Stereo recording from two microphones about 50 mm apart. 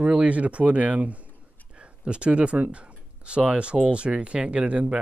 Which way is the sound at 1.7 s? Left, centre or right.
Right.